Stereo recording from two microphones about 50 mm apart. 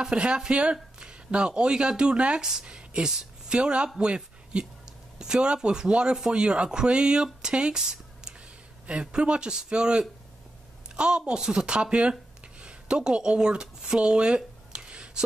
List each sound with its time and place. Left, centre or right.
0.0 s a woman's voice: centre
7.8 s a sound: centre
8.8 s speech: centre